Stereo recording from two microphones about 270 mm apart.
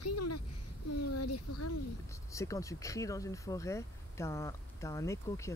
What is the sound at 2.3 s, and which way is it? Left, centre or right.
Speech, centre.